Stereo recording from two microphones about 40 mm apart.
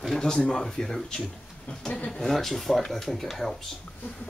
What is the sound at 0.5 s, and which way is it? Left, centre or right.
Speech, centre.